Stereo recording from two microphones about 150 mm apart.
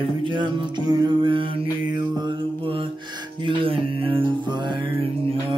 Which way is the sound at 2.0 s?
30° right (ahead or behind).